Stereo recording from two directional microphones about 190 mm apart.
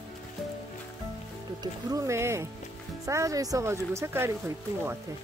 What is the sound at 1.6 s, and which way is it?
Speech, 20° right (ahead or behind).